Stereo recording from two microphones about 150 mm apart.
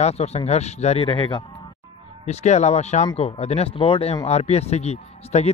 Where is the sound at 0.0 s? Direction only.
45° left (ahead or behind).